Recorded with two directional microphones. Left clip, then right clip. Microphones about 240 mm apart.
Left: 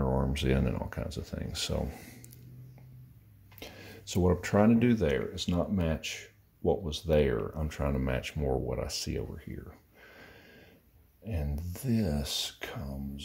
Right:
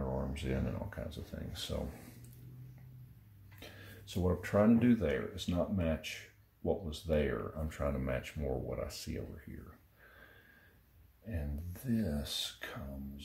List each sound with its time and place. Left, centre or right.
0.0 s speech: left
3.5 s speech: left
11.2 s speech: left